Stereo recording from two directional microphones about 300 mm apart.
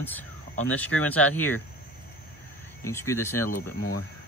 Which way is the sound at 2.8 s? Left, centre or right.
Centre.